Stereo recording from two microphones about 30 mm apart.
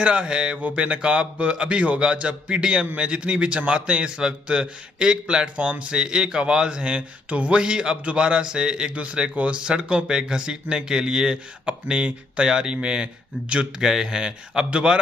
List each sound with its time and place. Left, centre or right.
0.0 s speech: right
0.6 s speech: right
6.8 s speech: right
7.5 s speech: right
13.7 s speech: centre